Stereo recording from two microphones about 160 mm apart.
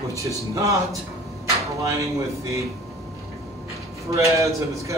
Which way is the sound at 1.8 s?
20° right (ahead or behind).